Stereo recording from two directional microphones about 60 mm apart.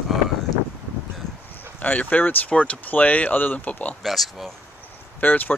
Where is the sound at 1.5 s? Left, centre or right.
Left.